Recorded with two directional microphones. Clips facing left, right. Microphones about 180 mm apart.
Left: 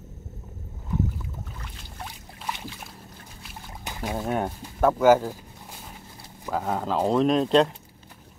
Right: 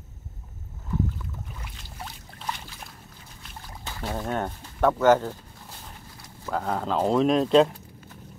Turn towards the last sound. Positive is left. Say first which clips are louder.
# right 1 dB
turn(degrees=0)  # may be behind; listen again after turning